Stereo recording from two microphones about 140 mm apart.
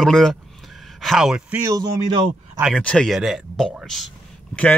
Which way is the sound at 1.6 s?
25° right (ahead or behind).